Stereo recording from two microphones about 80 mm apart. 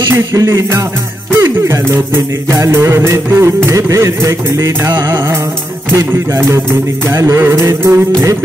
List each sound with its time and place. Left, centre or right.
0.1 s music: right